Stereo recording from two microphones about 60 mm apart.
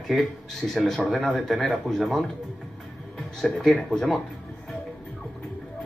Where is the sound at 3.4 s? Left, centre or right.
Centre.